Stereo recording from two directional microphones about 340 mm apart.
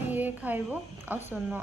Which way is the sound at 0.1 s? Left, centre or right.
Centre.